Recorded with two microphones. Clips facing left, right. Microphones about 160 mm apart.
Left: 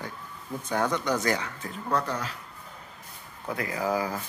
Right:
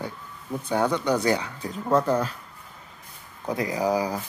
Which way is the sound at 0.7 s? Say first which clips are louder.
Right 4 dB; 10° right (ahead or behind).